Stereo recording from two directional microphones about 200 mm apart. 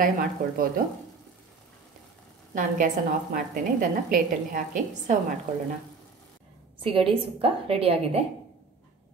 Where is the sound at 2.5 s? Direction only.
40° right (ahead or behind).